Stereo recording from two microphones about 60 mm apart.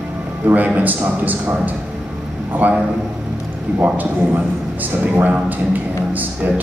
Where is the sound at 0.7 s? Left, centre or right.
Right.